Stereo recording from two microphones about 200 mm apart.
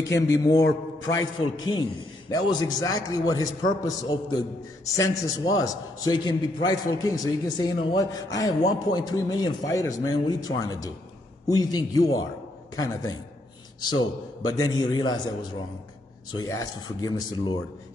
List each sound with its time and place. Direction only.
0.1 s a man's voice: 15° left (ahead or behind)
16.3 s a man's voice: 20° left (ahead or behind)